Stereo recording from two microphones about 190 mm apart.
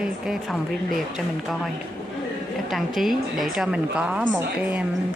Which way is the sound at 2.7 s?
Centre (ahead or behind).